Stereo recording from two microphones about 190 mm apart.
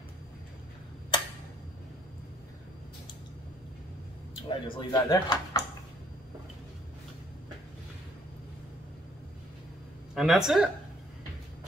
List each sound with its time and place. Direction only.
4.5 s speech: 25° left (ahead or behind)
10.1 s speech: centre (ahead or behind)